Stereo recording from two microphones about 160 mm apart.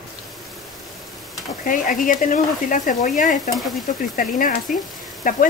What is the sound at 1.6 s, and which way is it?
Speech, 55° left (ahead or behind).